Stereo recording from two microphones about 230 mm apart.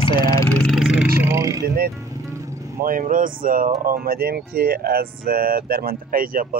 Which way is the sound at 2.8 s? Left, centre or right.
Right.